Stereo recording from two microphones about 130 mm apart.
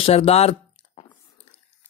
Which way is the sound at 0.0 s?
50° left (ahead or behind).